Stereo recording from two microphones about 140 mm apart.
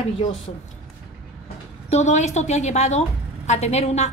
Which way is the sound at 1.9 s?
55° left (ahead or behind).